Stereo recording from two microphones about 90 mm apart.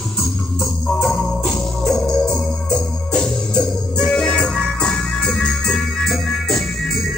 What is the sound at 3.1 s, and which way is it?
Music, 10° left (ahead or behind).